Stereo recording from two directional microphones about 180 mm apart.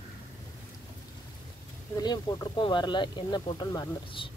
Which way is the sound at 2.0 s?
20° left (ahead or behind).